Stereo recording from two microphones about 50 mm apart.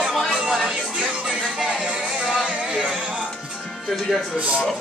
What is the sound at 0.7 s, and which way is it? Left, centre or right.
Music, centre.